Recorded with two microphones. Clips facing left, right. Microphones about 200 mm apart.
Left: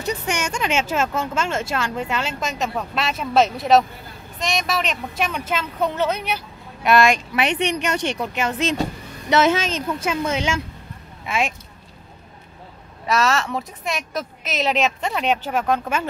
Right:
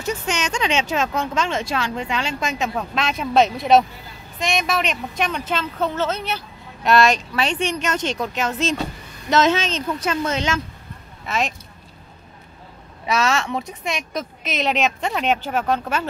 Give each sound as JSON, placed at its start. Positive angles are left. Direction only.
{"t": 0.0, "sound": "speech", "side_deg": 15}
{"t": 13.0, "sound": "speech", "side_deg": 0}